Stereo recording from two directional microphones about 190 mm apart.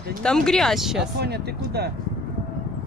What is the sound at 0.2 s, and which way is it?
Speech, 5° left (ahead or behind).